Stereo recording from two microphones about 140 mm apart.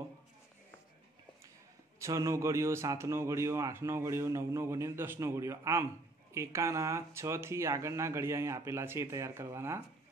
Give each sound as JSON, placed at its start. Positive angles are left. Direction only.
{"t": 2.0, "sound": "speech", "side_deg": -20}